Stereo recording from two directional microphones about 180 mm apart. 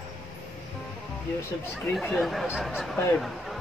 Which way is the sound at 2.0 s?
Centre (ahead or behind).